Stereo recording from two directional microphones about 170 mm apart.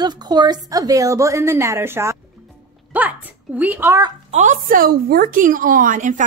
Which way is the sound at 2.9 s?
10° right (ahead or behind).